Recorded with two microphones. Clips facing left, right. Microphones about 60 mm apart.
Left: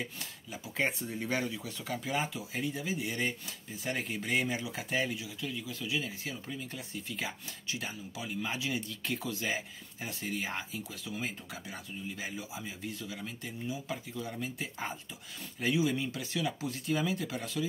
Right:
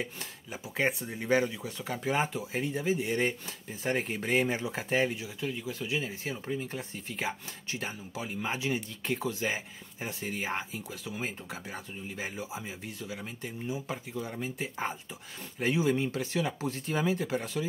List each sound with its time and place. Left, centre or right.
0.5 s speech: right